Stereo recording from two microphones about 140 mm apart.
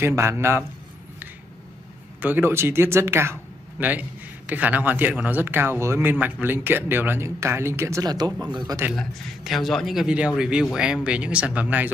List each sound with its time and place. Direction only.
0.0 s a man's voice: 20° right (ahead or behind)
2.2 s a man's voice: 15° right (ahead or behind)
8.9 s speech: centre (ahead or behind)